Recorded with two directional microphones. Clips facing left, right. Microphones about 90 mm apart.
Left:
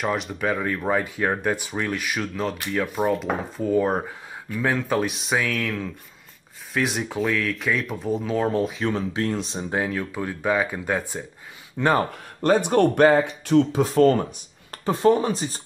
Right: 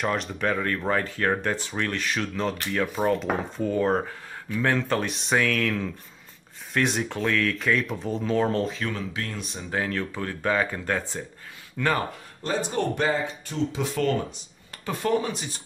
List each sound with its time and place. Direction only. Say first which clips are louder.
0.0 s speech: left 1 dB; 5° left (ahead or behind)
8.7 s speech: left 6 dB; 30° left (ahead or behind)
9.8 s speech: left 1 dB; 10° left (ahead or behind)
11.8 s speech: left 4 dB; 20° left (ahead or behind)
12.4 s speech: left 9 dB; 60° left (ahead or behind)
13.7 s speech: left 8 dB; 40° left (ahead or behind)
14.9 s speech: left 6 dB; 30° left (ahead or behind)